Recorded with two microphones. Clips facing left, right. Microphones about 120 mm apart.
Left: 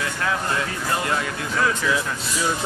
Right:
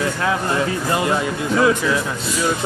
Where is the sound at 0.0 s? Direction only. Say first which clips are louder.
Right 5 dB; 20° right (ahead or behind).